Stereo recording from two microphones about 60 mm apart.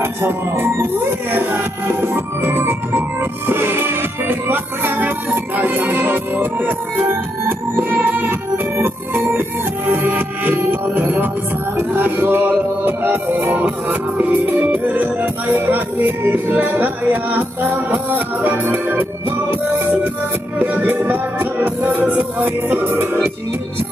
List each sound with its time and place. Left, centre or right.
0.0 s music: right
20.5 s music: right